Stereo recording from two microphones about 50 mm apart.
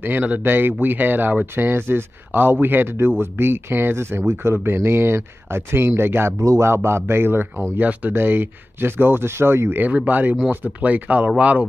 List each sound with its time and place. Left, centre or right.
0.0 s speech: right
6.4 s speech: right
9.8 s speech: right